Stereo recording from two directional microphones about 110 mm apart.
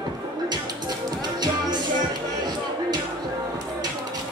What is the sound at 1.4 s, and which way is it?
Music, 40° right (ahead or behind).